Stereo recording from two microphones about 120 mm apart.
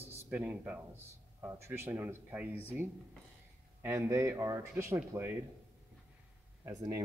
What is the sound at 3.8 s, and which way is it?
Speech, 20° right (ahead or behind).